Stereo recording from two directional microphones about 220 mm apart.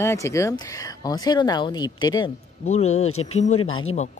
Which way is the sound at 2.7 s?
30° left (ahead or behind).